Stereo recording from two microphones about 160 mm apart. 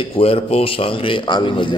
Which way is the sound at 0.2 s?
40° left (ahead or behind).